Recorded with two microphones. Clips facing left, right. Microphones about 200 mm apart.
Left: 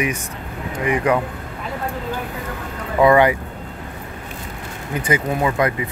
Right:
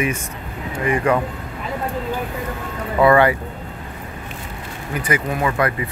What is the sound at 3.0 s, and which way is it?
Speech, 15° left (ahead or behind).